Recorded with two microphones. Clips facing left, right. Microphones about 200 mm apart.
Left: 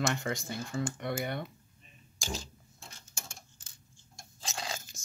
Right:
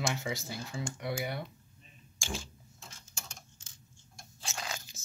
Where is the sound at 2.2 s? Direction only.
40° left (ahead or behind).